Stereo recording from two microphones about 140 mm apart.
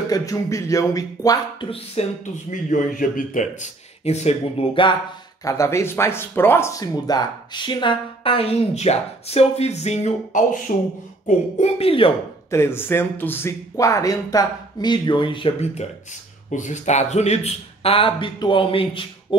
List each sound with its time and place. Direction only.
0.1 s speech: 25° left (ahead or behind)
2.0 s a man's voice: 45° left (ahead or behind)
2.5 s a man's voice: 70° left (ahead or behind); by 4.9 s 40° left (ahead or behind)
5.4 s a man's voice: 20° left (ahead or behind); by 12.1 s 40° left (ahead or behind)
12.4 s speech: 20° left (ahead or behind); by 15.5 s 35° left (ahead or behind)
15.6 s a man's voice: 50° left (ahead or behind)